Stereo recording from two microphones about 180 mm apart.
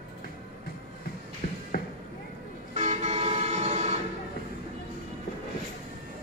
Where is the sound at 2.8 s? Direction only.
40° right (ahead or behind).